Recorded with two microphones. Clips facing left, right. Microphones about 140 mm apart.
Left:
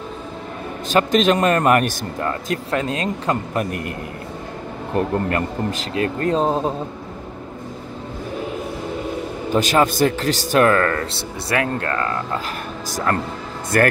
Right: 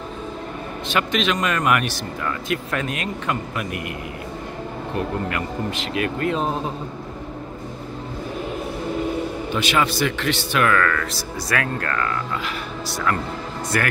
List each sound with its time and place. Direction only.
0.8 s a man's voice: 40° left (ahead or behind)
4.9 s a man's voice: 40° left (ahead or behind)
9.5 s a man's voice: 40° left (ahead or behind)
12.8 s speech: 45° left (ahead or behind)